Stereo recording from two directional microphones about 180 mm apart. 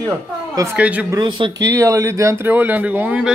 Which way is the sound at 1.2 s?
25° right (ahead or behind).